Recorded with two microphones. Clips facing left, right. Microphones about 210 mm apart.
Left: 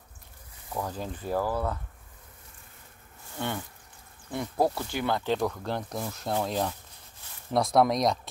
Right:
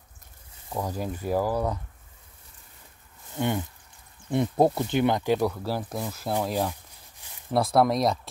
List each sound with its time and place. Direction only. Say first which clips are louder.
0.7 s speech: right 3 dB; 10° right (ahead or behind)
3.3 s speech: right 6 dB; 15° right (ahead or behind)
6.0 s a sound: right 1 dB; 5° right (ahead or behind)
7.5 s speech: right 1 dB; centre (ahead or behind)